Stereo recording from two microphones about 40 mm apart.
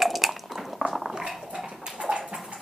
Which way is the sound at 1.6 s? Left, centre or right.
Right.